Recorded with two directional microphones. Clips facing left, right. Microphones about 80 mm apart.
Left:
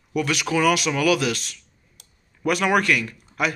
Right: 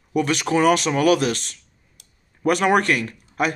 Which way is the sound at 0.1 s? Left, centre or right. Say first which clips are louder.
Right 3 dB; right.